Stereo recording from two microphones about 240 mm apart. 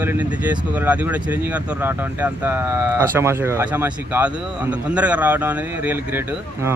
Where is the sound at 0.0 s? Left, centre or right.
Centre.